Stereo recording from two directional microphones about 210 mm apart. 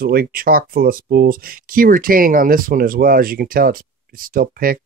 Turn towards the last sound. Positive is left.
turn(degrees=-45)  # may be behind; listen again after turning